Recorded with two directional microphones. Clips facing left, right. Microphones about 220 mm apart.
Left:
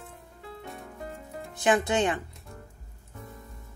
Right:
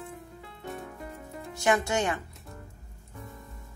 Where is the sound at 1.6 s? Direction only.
20° left (ahead or behind).